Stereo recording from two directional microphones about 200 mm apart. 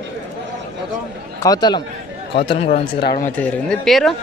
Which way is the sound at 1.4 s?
20° left (ahead or behind).